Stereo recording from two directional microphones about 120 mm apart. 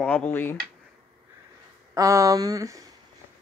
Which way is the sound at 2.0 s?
25° right (ahead or behind).